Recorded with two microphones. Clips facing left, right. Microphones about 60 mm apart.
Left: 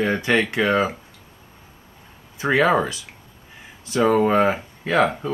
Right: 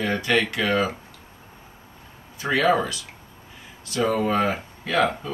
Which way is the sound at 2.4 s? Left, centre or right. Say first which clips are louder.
Left 3 dB; left.